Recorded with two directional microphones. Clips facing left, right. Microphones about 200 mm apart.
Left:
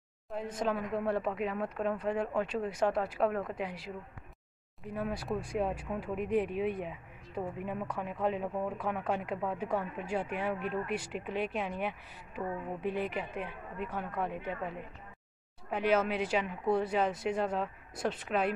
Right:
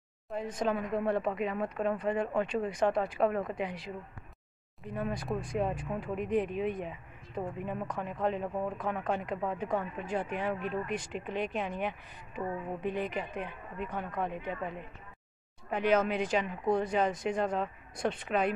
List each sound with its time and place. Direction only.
0.3 s speech: 5° left (ahead or behind)
4.9 s speech: 5° left (ahead or behind)